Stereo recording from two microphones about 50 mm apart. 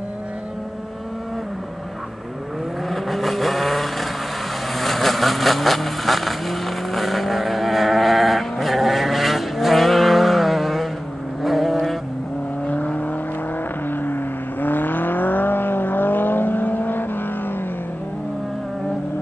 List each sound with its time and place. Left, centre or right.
2.9 s vehicle: centre
12.6 s vehicle: left
13.8 s vehicle: left